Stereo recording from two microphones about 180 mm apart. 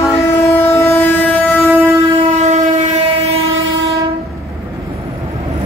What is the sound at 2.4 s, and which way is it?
Train, 40° right (ahead or behind).